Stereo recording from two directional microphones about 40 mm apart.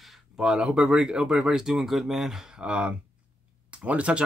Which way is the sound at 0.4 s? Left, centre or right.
Right.